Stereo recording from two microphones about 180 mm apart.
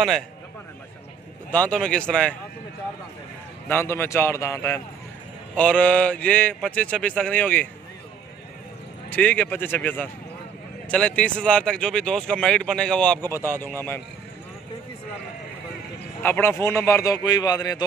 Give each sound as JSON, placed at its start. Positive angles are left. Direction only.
{"t": 1.5, "sound": "speech", "side_deg": 5}
{"t": 3.6, "sound": "speech", "side_deg": 15}
{"t": 9.1, "sound": "speech", "side_deg": 10}
{"t": 13.2, "sound": "speech", "side_deg": -15}
{"t": 16.2, "sound": "speech", "side_deg": 10}